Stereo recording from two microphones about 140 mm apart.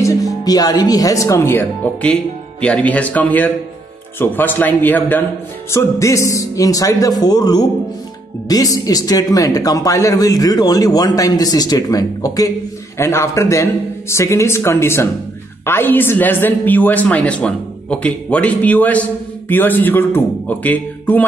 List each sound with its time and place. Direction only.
0.0 s speech: 25° left (ahead or behind)